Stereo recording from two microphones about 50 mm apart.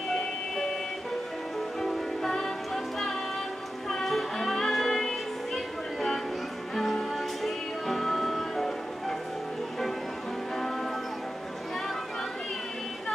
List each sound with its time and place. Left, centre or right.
1.8 s music: centre
10.5 s music: centre